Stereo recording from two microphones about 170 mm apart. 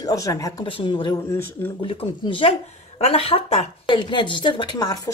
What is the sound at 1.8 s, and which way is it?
Speech, 30° left (ahead or behind).